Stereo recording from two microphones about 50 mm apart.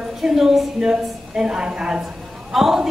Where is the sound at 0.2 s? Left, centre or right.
Centre.